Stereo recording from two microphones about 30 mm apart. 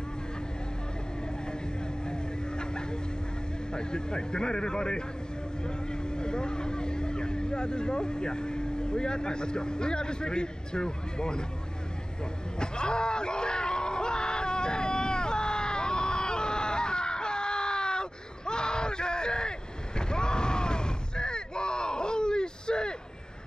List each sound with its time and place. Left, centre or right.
2.0 s vehicle: left
3.7 s a man's voice: left
12.5 s a sound: left